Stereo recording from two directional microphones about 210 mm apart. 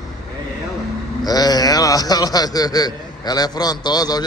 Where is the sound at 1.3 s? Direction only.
20° left (ahead or behind).